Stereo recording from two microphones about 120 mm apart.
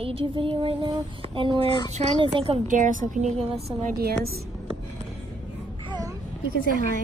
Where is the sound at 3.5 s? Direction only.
60° right (ahead or behind).